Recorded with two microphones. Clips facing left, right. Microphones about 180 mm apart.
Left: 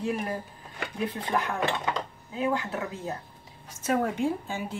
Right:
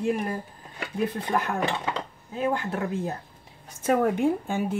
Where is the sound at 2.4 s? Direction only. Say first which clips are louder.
Right 2 dB; 45° right (ahead or behind).